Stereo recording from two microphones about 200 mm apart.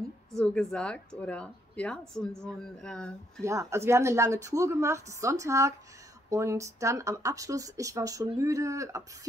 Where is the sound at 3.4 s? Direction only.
15° right (ahead or behind).